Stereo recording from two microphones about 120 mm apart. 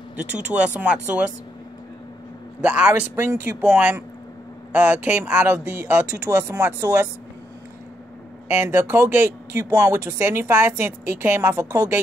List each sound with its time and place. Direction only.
0.2 s speech: 10° right (ahead or behind)
2.6 s speech: 10° right (ahead or behind)
8.5 s speech: 15° right (ahead or behind)